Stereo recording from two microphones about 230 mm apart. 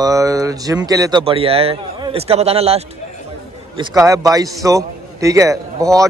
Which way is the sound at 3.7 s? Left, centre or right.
Centre.